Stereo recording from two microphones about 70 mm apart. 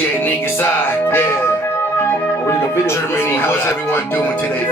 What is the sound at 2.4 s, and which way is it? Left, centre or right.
Speech, left.